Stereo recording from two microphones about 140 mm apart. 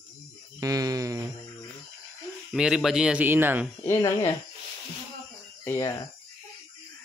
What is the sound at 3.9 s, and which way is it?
Speech, 25° left (ahead or behind).